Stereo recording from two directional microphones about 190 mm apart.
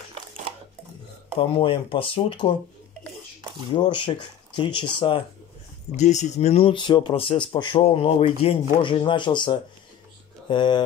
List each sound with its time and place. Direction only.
1.4 s speech: 30° left (ahead or behind)
3.7 s speech: 25° left (ahead or behind)
5.9 s speech: 40° left (ahead or behind)